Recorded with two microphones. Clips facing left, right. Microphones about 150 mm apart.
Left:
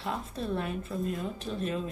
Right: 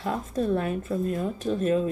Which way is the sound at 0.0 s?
45° right (ahead or behind).